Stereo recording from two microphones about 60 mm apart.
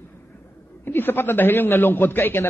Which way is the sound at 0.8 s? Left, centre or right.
Left.